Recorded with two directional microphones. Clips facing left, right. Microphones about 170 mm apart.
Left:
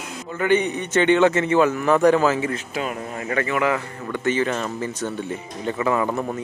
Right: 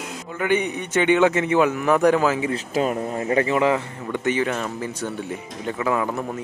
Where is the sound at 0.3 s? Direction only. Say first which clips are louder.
Left 2 dB; 10° right (ahead or behind).